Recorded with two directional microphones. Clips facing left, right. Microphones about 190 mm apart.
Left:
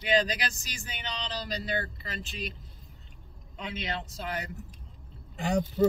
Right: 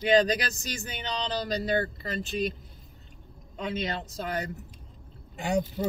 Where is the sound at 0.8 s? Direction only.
45° right (ahead or behind).